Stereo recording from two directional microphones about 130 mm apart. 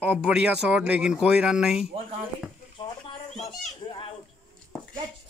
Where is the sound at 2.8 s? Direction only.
35° left (ahead or behind).